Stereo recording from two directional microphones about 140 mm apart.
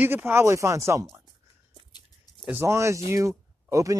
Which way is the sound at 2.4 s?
15° right (ahead or behind).